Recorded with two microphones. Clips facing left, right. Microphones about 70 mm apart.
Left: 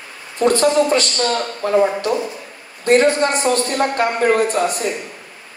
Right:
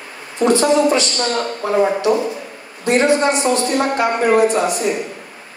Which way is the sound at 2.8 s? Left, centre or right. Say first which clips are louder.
Even; left.